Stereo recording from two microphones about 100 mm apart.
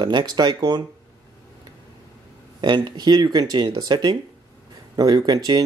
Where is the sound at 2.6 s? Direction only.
45° right (ahead or behind).